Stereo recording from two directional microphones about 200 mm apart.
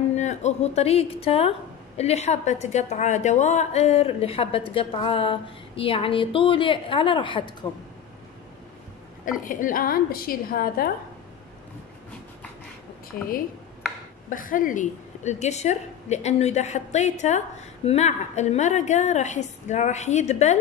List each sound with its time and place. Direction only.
0.1 s a woman's voice: 35° left (ahead or behind)
9.4 s a woman's voice: 40° left (ahead or behind)
14.3 s a woman's voice: 45° left (ahead or behind)